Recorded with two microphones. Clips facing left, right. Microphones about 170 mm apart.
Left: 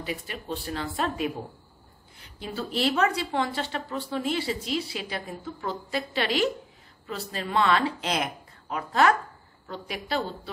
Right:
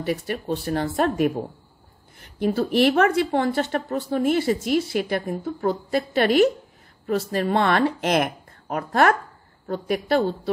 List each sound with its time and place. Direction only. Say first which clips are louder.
0.5 s speech: right 7 dB; 40° right (ahead or behind)